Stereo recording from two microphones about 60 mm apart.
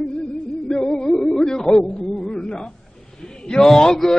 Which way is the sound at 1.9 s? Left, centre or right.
Centre.